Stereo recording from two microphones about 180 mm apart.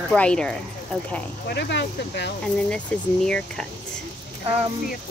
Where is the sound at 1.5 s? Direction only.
75° left (ahead or behind).